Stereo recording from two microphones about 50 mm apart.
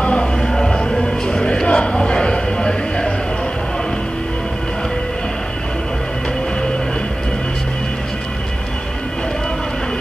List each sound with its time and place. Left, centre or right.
0.0 s music: left
0.4 s music: centre